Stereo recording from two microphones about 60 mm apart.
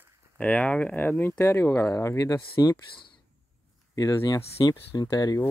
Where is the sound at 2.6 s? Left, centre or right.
Left.